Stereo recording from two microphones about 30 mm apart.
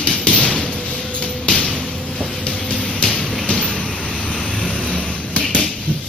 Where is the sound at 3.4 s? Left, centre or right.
Left.